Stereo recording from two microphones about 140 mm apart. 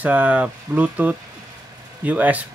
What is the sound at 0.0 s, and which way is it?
Speech, 10° right (ahead or behind).